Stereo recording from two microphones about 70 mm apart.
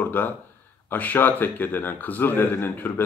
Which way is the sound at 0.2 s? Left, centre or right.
Left.